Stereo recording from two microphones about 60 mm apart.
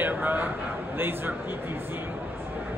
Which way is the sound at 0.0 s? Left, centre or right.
Right.